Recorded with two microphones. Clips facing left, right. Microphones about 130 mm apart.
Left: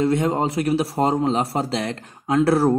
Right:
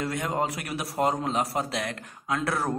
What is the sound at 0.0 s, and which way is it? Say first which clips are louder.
A man's voice: left 8 dB; 25° left (ahead or behind).